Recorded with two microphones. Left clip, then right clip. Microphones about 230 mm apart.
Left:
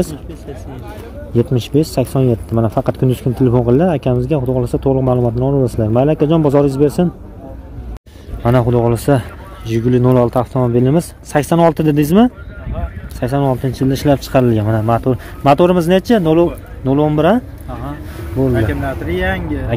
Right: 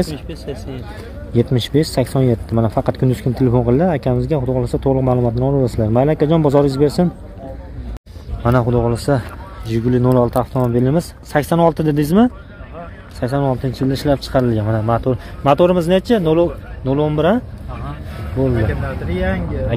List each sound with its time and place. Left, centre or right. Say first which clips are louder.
1.3 s speech: left 1 dB; centre
8.4 s speech: left 2 dB; centre
18.7 s speech: left 4 dB; left